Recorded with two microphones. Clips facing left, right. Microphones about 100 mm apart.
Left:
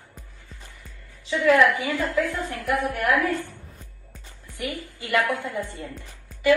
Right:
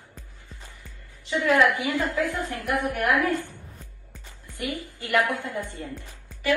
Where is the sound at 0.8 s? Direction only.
20° right (ahead or behind).